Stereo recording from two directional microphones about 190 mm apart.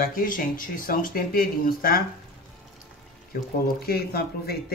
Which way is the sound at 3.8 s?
55° left (ahead or behind).